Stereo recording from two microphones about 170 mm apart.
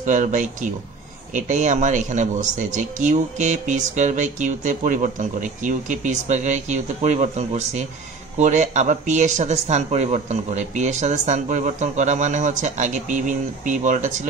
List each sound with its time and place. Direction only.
0.0 s a man's voice: 50° right (ahead or behind)